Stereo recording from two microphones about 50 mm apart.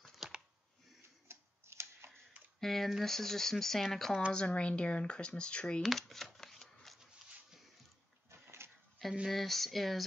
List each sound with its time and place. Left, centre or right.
0.2 s a sound: centre
1.3 s tick-tock: right
2.6 s speech: centre
4.3 s speech: centre
5.8 s speech: centre
6.4 s shuffling cards: centre
8.3 s a sound: right
9.3 s speech: centre